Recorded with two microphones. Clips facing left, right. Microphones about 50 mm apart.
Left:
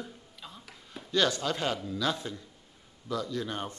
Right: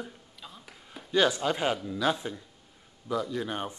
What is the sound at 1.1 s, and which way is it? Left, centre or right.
Speech, centre.